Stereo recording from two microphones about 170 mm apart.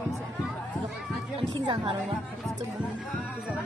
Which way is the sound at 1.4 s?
30° right (ahead or behind).